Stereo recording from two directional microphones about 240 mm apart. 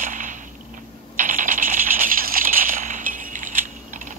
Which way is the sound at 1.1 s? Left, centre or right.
Right.